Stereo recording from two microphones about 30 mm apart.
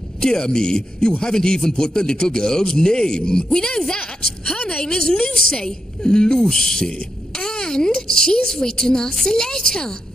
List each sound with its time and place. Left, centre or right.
0.2 s speech: left
6.9 s speech: left